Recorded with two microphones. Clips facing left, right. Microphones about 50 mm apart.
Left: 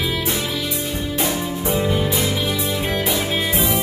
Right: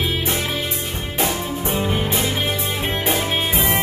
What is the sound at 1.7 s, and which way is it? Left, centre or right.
Music, right.